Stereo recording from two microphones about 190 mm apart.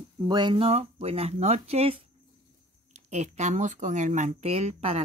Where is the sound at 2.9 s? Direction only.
35° right (ahead or behind).